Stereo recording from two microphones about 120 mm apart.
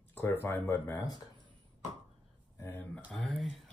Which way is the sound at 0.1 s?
15° left (ahead or behind).